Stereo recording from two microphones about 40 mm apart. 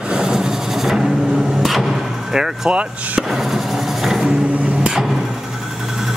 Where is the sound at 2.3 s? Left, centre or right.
Centre.